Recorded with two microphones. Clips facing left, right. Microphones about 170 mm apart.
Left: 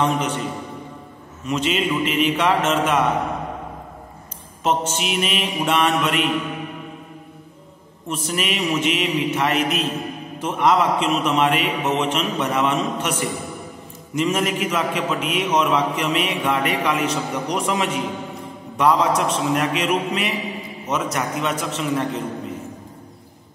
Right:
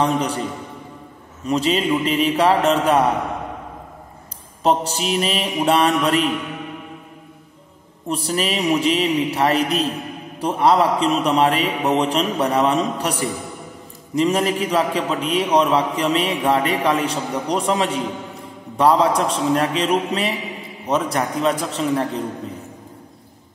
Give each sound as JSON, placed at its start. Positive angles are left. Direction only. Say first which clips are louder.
{"t": 0.0, "sound": "a man's voice", "louder": "right 1 dB", "side_deg": -35}
{"t": 1.4, "sound": "a man's voice", "louder": "right 3 dB", "side_deg": -35}
{"t": 4.6, "sound": "a man's voice", "louder": "right 3 dB", "side_deg": -35}
{"t": 8.1, "sound": "a man's voice", "louder": "right 3 dB", "side_deg": -35}